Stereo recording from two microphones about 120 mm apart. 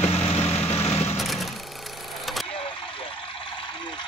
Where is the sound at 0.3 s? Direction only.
55° left (ahead or behind).